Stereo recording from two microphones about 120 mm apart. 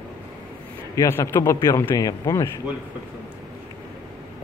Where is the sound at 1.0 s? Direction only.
20° left (ahead or behind).